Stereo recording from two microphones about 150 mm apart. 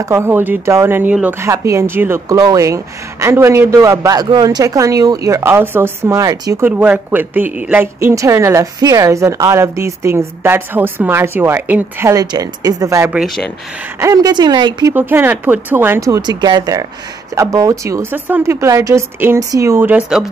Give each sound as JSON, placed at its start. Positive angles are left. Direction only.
{"t": 0.0, "sound": "a woman's voice", "side_deg": -15}
{"t": 6.6, "sound": "a woman's voice", "side_deg": -10}
{"t": 15.0, "sound": "a woman's voice", "side_deg": -15}